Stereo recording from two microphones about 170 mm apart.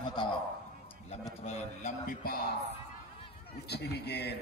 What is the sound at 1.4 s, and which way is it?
Speech, 45° left (ahead or behind).